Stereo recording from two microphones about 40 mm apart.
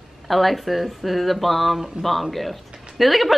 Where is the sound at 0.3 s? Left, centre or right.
Centre.